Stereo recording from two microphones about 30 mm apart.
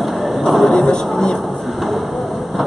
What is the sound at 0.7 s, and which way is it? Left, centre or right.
Music, left.